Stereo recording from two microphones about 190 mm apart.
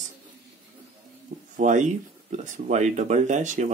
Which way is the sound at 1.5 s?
40° right (ahead or behind).